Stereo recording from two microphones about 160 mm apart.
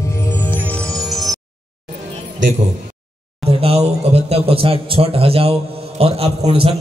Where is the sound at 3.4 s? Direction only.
40° right (ahead or behind).